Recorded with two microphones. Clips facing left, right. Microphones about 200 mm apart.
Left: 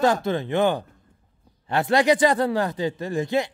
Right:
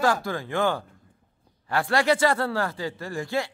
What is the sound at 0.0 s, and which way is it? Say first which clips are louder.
A man's voice: left 4 dB; 20° left (ahead or behind).